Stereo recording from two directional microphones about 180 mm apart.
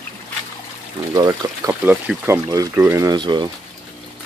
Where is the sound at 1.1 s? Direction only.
20° right (ahead or behind).